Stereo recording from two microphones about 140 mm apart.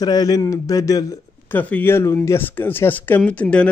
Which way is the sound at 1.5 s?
15° left (ahead or behind).